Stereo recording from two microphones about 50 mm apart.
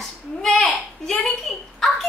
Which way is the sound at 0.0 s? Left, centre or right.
Centre.